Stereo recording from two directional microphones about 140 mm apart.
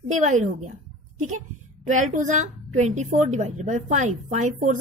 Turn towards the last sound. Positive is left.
turn(degrees=-60)  # may be behind; listen again after turning